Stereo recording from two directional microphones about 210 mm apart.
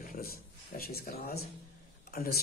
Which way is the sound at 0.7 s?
45° left (ahead or behind).